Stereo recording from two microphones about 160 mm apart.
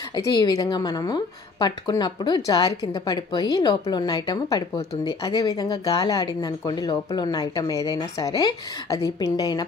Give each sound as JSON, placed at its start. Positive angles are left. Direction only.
{"t": 0.1, "sound": "a woman's voice", "side_deg": 25}